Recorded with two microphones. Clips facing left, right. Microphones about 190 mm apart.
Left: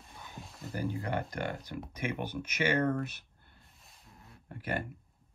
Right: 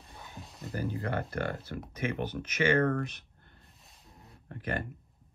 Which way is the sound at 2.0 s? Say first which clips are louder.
Right 3 dB; 10° left (ahead or behind).